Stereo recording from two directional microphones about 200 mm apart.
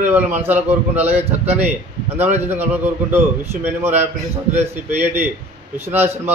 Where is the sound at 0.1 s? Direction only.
10° right (ahead or behind).